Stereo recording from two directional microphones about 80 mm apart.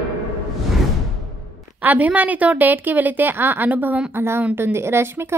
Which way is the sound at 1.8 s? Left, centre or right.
Right.